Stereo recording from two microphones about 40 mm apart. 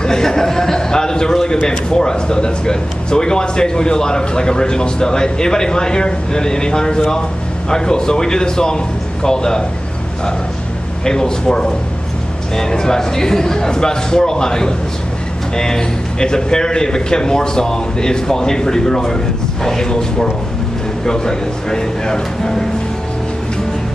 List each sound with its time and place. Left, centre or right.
0.0 s a man's voice: centre
11.1 s a man's voice: centre